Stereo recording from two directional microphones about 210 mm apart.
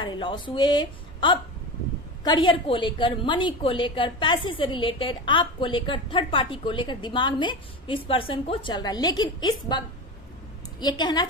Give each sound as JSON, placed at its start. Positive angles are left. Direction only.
{"t": 0.0, "sound": "a woman's voice", "side_deg": 20}
{"t": 10.8, "sound": "a woman's voice", "side_deg": 20}